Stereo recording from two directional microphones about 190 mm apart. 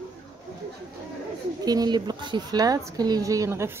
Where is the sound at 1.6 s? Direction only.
20° right (ahead or behind).